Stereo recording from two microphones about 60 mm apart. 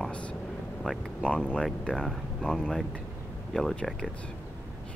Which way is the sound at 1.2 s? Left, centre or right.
Centre.